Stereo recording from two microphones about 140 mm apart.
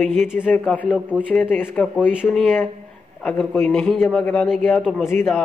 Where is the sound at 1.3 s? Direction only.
15° left (ahead or behind).